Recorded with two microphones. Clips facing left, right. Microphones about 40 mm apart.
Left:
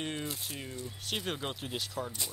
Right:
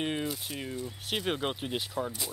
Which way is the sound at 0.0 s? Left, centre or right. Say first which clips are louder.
Right 5 dB; centre.